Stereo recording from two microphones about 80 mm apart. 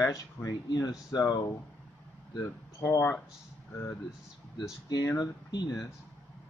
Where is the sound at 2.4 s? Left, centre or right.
Left.